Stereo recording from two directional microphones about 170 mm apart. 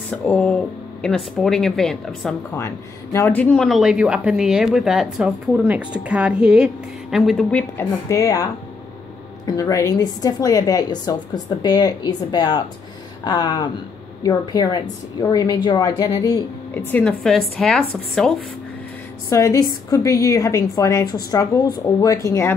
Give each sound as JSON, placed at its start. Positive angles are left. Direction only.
{"t": 0.1, "sound": "speech", "side_deg": 5}
{"t": 2.5, "sound": "speech", "side_deg": 15}
{"t": 7.7, "sound": "a woman's voice", "side_deg": 20}
{"t": 9.5, "sound": "a woman's voice", "side_deg": 20}
{"t": 16.7, "sound": "speech", "side_deg": 10}
{"t": 19.2, "sound": "a woman's voice", "side_deg": 20}